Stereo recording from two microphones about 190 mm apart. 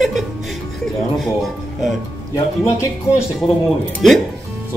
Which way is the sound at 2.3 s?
15° left (ahead or behind).